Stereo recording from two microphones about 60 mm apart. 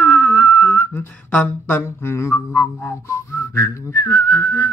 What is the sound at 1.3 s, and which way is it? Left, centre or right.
Speech, left.